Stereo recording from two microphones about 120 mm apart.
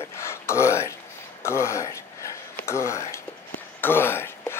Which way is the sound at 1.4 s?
20° left (ahead or behind).